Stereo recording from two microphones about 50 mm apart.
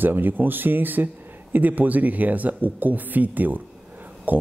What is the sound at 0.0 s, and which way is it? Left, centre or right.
A man's voice, right.